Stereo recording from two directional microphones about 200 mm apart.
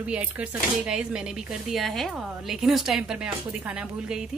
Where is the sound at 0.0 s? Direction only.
5° right (ahead or behind).